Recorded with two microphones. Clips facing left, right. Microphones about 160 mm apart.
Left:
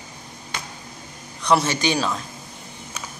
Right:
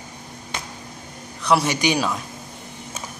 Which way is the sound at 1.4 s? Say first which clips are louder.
Even; 5° right (ahead or behind).